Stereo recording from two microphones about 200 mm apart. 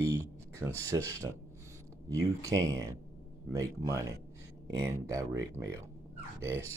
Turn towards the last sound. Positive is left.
turn(degrees=-15)  # may be behind; listen again after turning